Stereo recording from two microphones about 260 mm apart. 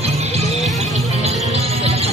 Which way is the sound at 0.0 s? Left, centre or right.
Right.